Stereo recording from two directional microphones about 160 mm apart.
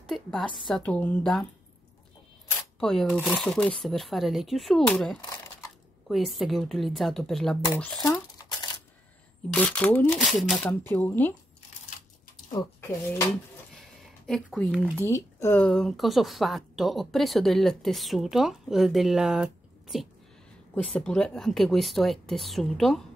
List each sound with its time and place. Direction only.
0.1 s a sound: centre (ahead or behind)
0.7 s speech: 5° left (ahead or behind)
2.8 s speech: 5° left (ahead or behind)
7.6 s speech: 20° left (ahead or behind)
8.4 s typewriter: 25° left (ahead or behind)
9.5 s speech: 5° left (ahead or behind)
12.8 s speech: 15° left (ahead or behind)
14.2 s speech: 5° left (ahead or behind)
20.7 s speech: 10° left (ahead or behind)